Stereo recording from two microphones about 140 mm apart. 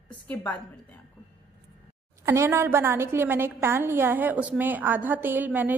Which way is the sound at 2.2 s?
20° right (ahead or behind).